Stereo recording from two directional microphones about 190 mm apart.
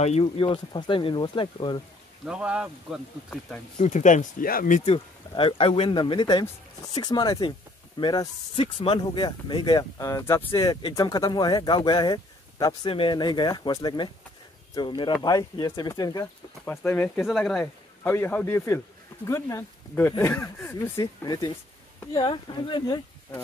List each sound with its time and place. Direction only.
0.0 s speech: 30° left (ahead or behind)
2.2 s speech: 5° right (ahead or behind)
3.7 s speech: 40° left (ahead or behind)
4.8 s speech: 30° left (ahead or behind)